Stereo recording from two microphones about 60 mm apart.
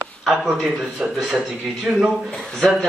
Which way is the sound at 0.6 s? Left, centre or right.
Centre.